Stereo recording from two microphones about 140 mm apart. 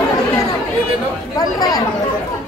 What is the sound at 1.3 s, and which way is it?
Chatter, 30° left (ahead or behind).